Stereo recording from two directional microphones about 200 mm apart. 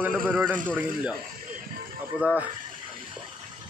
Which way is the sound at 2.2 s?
5° right (ahead or behind).